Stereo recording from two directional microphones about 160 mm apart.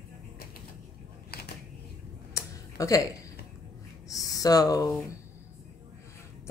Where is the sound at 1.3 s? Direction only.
80° left.